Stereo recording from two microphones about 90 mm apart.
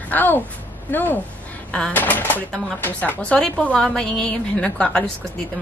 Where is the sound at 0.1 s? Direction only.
20° left (ahead or behind).